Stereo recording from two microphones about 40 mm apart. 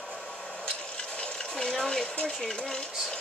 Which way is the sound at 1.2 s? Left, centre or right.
Centre.